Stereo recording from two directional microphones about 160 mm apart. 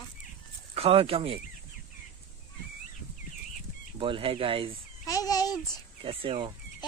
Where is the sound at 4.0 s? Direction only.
35° right (ahead or behind).